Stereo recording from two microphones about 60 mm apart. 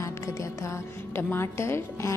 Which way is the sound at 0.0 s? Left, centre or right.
Left.